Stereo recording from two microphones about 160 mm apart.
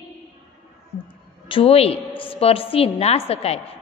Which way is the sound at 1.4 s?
35° left (ahead or behind).